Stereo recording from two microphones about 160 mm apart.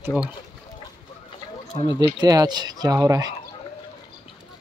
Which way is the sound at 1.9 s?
25° right (ahead or behind).